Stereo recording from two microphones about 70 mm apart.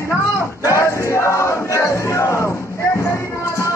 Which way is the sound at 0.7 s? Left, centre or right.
Left.